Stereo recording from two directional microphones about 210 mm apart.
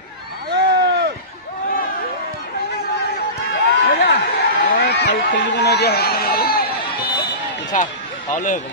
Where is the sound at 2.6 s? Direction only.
45° left (ahead or behind).